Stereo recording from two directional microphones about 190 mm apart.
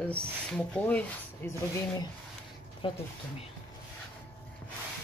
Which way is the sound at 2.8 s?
25° left (ahead or behind).